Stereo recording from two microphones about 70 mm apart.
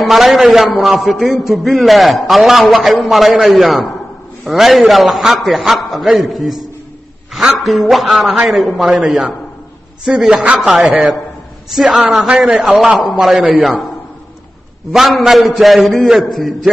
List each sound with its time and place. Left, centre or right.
0.0 s a man's voice: centre
14.9 s a man's voice: centre